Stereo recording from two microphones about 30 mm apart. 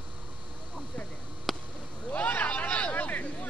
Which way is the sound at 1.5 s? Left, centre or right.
Centre.